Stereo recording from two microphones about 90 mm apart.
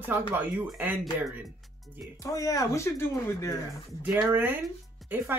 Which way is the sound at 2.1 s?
40° left (ahead or behind).